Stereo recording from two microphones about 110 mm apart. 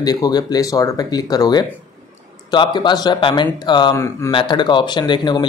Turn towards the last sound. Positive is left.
turn(degrees=45)  # may be behind; listen again after turning